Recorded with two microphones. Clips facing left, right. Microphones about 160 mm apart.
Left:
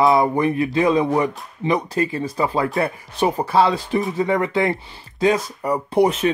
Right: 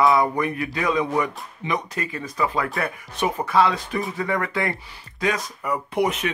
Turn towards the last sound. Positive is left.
turn(degrees=30)  # may be behind; listen again after turning